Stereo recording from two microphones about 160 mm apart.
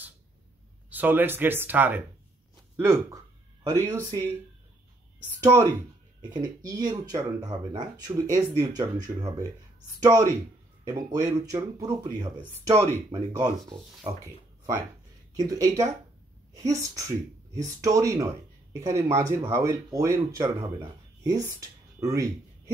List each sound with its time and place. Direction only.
0.8 s speech: 10° right (ahead or behind)
5.4 s speech: 15° right (ahead or behind)